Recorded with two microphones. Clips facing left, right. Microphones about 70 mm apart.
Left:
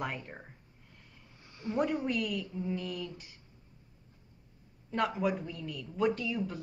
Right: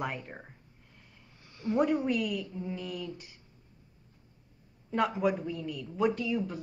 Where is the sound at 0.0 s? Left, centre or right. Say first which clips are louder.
Right 2 dB; centre.